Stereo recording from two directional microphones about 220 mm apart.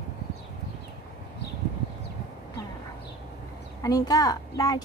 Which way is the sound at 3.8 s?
15° left (ahead or behind).